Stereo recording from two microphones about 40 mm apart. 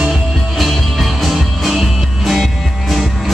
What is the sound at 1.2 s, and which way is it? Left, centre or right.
Music, centre.